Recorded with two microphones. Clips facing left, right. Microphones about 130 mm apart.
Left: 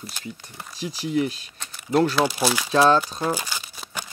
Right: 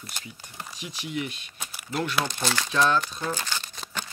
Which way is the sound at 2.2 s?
10° left (ahead or behind).